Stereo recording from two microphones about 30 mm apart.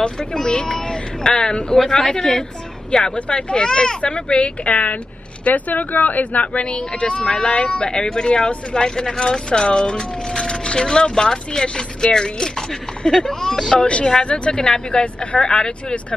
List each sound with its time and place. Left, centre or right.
0.0 s speech: left
3.2 s speech: left
4.0 s a woman's voice: left
5.4 s speech: left
6.4 s speech: left
13.8 s speech: left